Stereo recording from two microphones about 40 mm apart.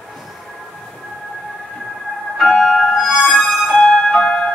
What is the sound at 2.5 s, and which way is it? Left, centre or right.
Music, centre.